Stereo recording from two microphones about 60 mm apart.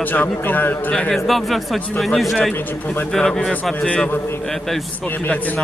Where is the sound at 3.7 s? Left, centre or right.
Left.